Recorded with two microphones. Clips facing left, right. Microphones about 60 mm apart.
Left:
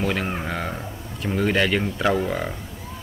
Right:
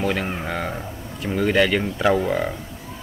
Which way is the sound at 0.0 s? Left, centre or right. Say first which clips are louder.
Right 1 dB; centre.